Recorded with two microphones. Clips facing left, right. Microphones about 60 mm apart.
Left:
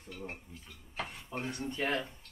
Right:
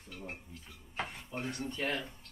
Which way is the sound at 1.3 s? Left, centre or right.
Left.